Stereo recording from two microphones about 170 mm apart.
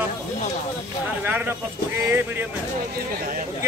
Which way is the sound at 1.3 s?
10° right (ahead or behind).